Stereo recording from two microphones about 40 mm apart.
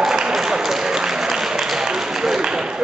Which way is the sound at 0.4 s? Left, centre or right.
Centre.